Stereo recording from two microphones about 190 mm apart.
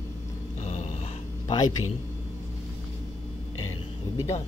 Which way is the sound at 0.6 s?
35° left (ahead or behind).